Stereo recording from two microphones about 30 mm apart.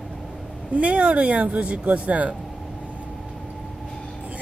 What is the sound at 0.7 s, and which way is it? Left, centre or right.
Speech, right.